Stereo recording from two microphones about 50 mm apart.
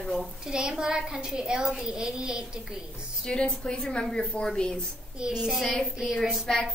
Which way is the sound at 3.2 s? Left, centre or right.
Centre.